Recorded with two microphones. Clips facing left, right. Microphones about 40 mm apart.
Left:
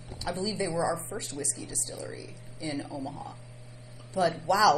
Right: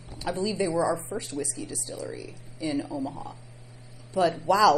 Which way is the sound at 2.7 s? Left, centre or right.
Right.